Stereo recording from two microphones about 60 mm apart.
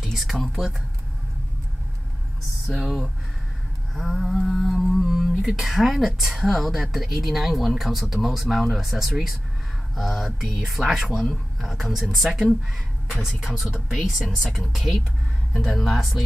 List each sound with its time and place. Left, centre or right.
0.0 s a sound: centre
0.4 s a woman's voice: centre
2.7 s speech: centre
3.9 s a woman's voice: centre
14.1 s speech: centre
14.4 s a woman's voice: centre